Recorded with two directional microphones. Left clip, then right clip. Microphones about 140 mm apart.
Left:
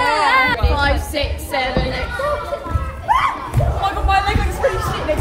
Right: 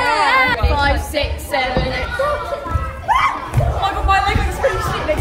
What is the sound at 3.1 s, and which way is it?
Thump, 15° left (ahead or behind).